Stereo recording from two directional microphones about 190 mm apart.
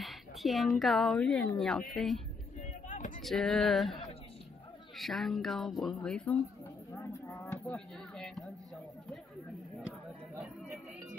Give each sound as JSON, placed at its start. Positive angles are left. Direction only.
{"t": 0.0, "sound": "speech", "side_deg": 0}
{"t": 6.9, "sound": "a sound", "side_deg": 15}
{"t": 7.6, "sound": "speech", "side_deg": 5}
{"t": 10.3, "sound": "chatter", "side_deg": -10}